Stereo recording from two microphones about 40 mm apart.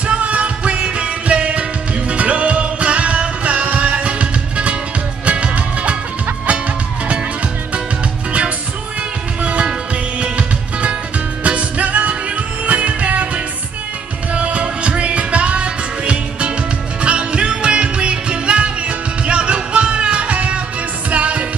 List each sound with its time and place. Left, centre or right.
0.0 s music: right
9.4 s music: right
14.3 s music: right